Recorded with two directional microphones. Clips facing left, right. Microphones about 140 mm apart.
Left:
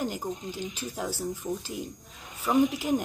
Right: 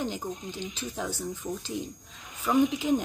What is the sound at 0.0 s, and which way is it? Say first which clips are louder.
Speech: left 1 dB; 10° left (ahead or behind).